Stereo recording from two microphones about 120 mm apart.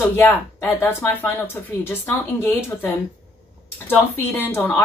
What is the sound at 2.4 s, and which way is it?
A woman's voice, 20° left (ahead or behind).